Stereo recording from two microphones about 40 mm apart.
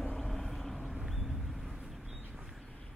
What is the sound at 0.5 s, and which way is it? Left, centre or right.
Vehicle, centre.